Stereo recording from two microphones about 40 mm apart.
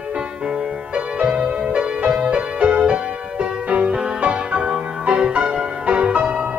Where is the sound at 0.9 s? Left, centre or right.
Right.